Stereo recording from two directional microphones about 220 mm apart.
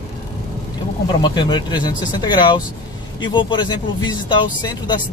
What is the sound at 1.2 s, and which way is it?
Speech, 20° left (ahead or behind).